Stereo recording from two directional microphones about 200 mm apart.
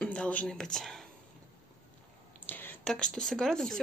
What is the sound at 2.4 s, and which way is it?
Speech, 10° left (ahead or behind).